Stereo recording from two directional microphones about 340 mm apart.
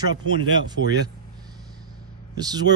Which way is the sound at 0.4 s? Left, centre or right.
Right.